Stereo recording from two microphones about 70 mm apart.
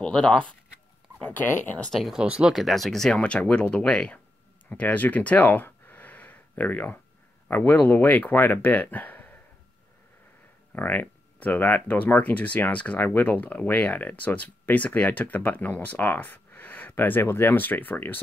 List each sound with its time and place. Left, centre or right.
0.0 s speech: centre
1.2 s speech: left
1.9 s speech: centre
2.1 s speech: centre
2.5 s speech: centre
3.2 s speech: centre
10.7 s speech: left